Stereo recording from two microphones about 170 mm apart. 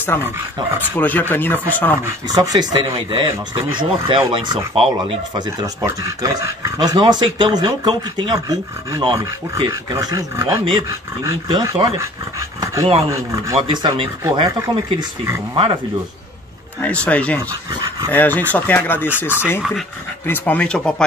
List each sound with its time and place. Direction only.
0.0 s speech: 15° left (ahead or behind)
2.0 s speech: 20° right (ahead or behind)
5.6 s speech: 20° right (ahead or behind)
13.6 s speech: 30° right (ahead or behind)
15.5 s speech: 30° right (ahead or behind)
16.8 s speech: 10° left (ahead or behind)